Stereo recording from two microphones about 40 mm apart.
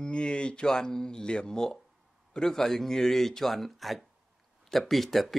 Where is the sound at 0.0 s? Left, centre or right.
Left.